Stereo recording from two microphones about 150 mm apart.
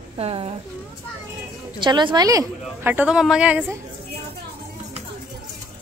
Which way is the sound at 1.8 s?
30° right (ahead or behind).